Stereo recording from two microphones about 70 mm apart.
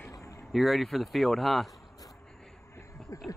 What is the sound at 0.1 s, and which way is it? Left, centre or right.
Vehicle, left.